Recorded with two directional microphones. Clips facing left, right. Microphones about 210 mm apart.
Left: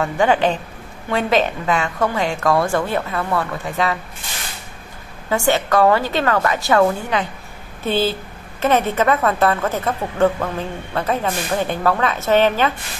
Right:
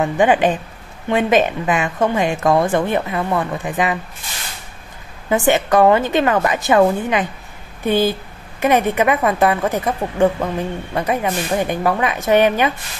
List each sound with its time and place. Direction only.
0.0 s a woman's voice: 15° right (ahead or behind)
5.3 s a woman's voice: 20° right (ahead or behind)